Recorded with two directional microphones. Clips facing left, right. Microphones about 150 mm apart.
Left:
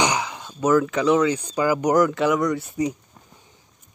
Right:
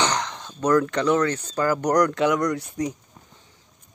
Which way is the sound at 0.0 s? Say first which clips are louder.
Left 2 dB; 10° left (ahead or behind).